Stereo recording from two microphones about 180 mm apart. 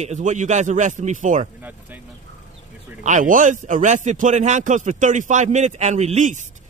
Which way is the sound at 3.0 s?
45° right (ahead or behind).